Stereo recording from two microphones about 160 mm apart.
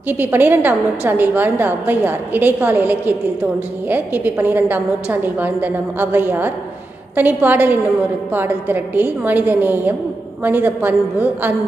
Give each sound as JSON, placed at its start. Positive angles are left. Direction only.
{"t": 0.1, "sound": "a woman's voice", "side_deg": -10}